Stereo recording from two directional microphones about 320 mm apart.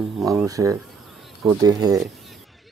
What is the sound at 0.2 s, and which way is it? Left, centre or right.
Speech, centre.